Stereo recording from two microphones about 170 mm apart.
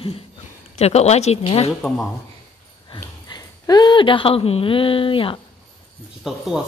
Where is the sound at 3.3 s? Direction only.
25° left (ahead or behind).